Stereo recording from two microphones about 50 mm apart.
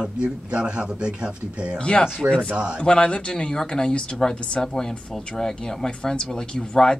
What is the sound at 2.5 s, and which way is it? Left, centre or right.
Speech, right.